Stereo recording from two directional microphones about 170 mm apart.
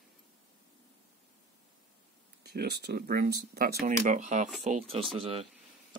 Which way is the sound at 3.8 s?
50° right (ahead or behind).